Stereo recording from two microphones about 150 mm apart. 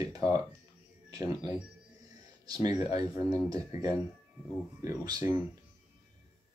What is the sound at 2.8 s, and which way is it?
Speech, 25° right (ahead or behind).